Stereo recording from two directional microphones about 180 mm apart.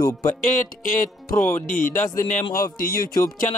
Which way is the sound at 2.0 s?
15° left (ahead or behind).